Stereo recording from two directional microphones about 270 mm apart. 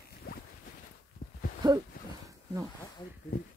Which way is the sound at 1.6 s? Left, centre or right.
Centre.